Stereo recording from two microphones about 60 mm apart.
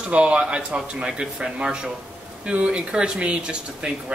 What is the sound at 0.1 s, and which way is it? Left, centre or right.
Speech, centre.